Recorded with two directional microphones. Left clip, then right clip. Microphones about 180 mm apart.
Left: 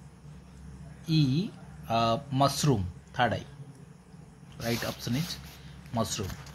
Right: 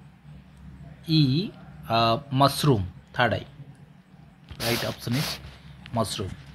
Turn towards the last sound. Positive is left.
turn(degrees=-10)  # may be behind; listen again after turning